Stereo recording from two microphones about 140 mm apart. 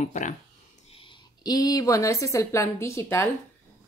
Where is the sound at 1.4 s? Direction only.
25° left (ahead or behind).